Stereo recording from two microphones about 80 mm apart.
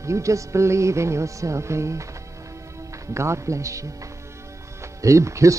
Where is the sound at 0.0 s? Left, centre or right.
Right.